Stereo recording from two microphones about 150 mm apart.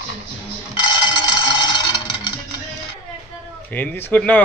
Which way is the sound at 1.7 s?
30° left (ahead or behind).